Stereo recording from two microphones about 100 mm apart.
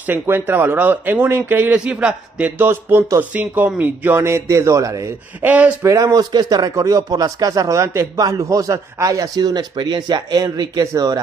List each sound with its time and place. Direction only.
0.0 s speech: 20° right (ahead or behind)
5.4 s speech: 15° right (ahead or behind)
5.8 s speech: 30° right (ahead or behind)